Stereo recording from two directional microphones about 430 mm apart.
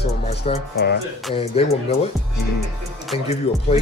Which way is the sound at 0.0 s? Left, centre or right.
Centre.